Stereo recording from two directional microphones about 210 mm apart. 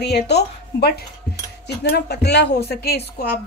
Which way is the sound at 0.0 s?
50° left (ahead or behind).